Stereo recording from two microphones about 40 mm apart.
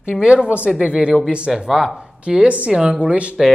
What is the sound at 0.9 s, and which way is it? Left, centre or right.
Speech, right.